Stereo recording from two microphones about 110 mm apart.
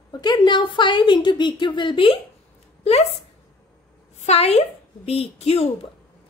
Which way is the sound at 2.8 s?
65° left (ahead or behind).